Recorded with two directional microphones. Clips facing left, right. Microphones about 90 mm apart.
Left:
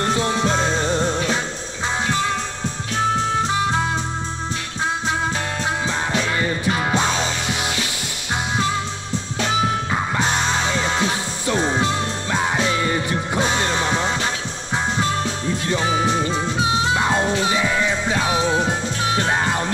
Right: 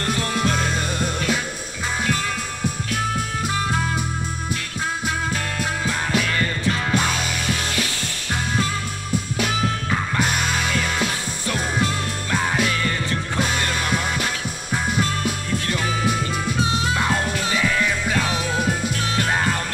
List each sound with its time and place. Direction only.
0.0 s music: 25° left (ahead or behind)
5.9 s music: 20° left (ahead or behind)
9.9 s music: 25° left (ahead or behind)
15.7 s music: 25° left (ahead or behind)